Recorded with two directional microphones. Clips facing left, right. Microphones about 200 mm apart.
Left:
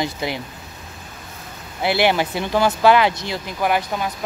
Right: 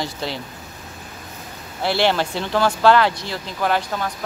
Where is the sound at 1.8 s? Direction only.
15° left (ahead or behind).